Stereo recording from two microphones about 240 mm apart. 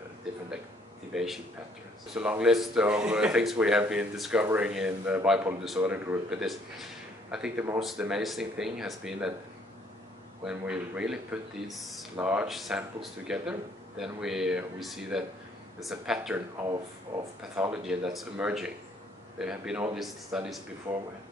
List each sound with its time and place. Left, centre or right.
1.1 s speech: centre
10.4 s speech: centre
16.5 s speech: centre
17.4 s speech: centre